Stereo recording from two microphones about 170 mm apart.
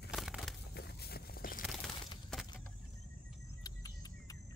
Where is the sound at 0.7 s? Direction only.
70° left (ahead or behind).